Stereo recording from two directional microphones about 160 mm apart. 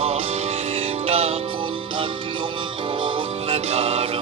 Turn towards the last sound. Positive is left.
turn(degrees=-40)  # may be behind; listen again after turning